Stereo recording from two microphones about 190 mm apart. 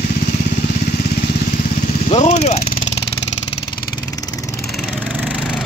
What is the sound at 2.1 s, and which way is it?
Speech, 35° left (ahead or behind).